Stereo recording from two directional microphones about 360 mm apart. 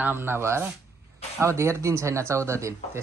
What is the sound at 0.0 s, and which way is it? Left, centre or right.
A man's voice, centre.